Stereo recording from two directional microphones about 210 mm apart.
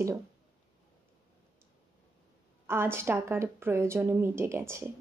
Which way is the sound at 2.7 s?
10° right (ahead or behind).